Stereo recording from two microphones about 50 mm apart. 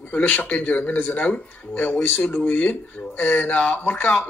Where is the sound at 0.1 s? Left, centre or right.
Left.